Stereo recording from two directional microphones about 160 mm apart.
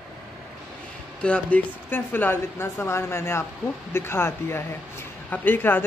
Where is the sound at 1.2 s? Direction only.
5° left (ahead or behind).